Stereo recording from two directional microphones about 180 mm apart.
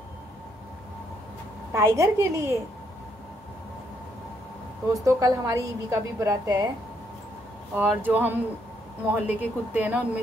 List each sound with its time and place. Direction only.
1.7 s a woman's voice: 15° right (ahead or behind)
5.0 s a woman's voice: 20° right (ahead or behind)
7.7 s a woman's voice: 10° right (ahead or behind)